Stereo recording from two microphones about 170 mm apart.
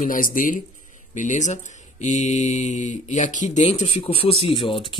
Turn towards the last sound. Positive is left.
turn(degrees=30)  # may be behind; listen again after turning